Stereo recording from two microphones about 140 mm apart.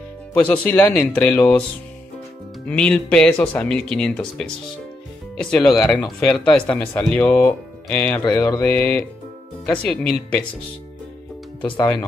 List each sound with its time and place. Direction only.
0.3 s speech: 10° left (ahead or behind)
2.6 s speech: 5° left (ahead or behind)
8.4 s mantra: 20° left (ahead or behind)
8.6 s speech: 10° left (ahead or behind)